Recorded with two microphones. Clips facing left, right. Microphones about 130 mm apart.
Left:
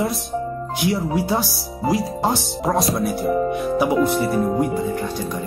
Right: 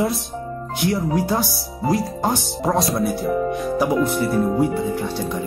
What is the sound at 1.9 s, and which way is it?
Speech, centre (ahead or behind).